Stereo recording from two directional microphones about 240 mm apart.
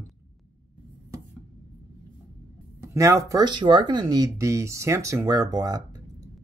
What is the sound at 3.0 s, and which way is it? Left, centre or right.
Speech, centre.